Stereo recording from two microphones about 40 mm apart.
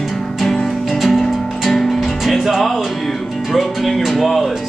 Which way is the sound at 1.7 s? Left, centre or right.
Centre.